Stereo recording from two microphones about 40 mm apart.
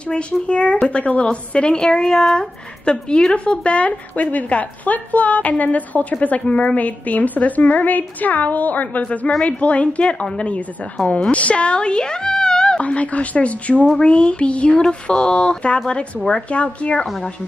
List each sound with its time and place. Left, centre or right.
0.1 s child singing: left
3.4 s a woman's voice: left
12.8 s a woman's voice: left
14.0 s child singing: left